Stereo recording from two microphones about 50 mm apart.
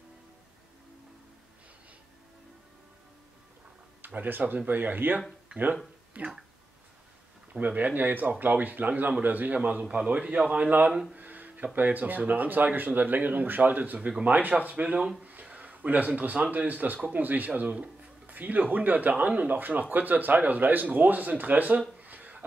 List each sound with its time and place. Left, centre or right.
4.0 s speech: right
7.5 s a man's voice: right
10.9 s speech: centre
11.1 s a man's voice: right